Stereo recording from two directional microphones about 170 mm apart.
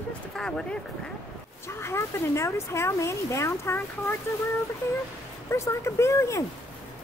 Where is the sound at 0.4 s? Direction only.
5° left (ahead or behind).